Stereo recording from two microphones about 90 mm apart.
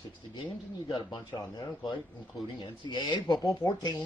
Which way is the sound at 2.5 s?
60° left (ahead or behind).